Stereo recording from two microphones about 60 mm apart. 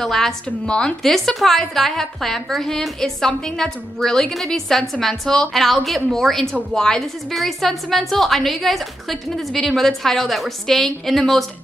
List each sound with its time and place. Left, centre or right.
0.0 s a woman's voice: centre
0.5 s a woman's voice: centre
1.0 s a woman's voice: centre